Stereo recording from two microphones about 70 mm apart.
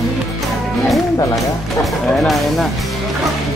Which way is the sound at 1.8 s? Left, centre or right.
Centre.